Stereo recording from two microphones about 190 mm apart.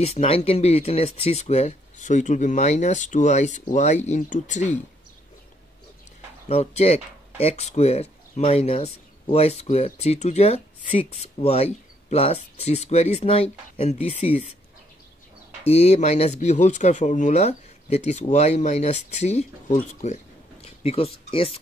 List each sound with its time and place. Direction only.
0.0 s speech: 35° left (ahead or behind)
6.5 s speech: 35° left (ahead or behind)
15.7 s speech: 35° left (ahead or behind)